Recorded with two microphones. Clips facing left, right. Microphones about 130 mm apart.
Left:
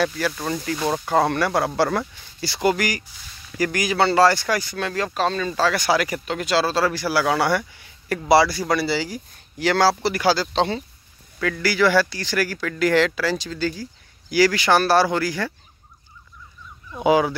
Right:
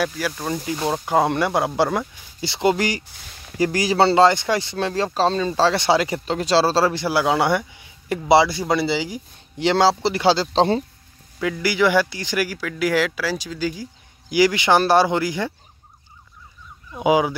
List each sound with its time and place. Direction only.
0.0 s speech: 10° right (ahead or behind); by 10.8 s 35° right (ahead or behind)
11.3 s speech: 15° right (ahead or behind)
16.9 s speech: 15° right (ahead or behind)